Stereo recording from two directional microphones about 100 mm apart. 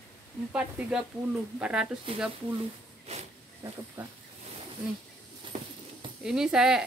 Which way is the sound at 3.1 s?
90° right.